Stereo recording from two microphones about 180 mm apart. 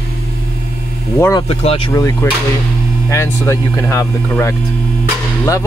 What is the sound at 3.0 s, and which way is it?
Speech, 15° left (ahead or behind).